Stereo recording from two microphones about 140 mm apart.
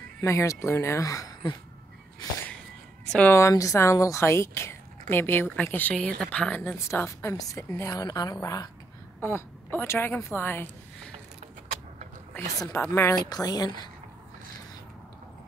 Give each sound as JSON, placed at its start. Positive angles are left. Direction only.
{"t": 0.2, "sound": "speech", "side_deg": 20}
{"t": 3.1, "sound": "a woman's voice", "side_deg": 10}
{"t": 3.3, "sound": "speech", "side_deg": 20}
{"t": 9.2, "sound": "speech", "side_deg": 15}
{"t": 12.4, "sound": "speech", "side_deg": 20}
{"t": 13.3, "sound": "speech", "side_deg": 30}